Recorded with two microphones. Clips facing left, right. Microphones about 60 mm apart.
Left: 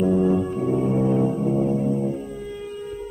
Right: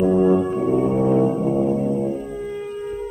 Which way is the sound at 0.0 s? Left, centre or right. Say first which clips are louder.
Right 3 dB; right.